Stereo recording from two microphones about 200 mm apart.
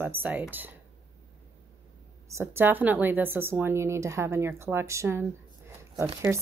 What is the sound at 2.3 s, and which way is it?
A woman's voice, 10° right (ahead or behind).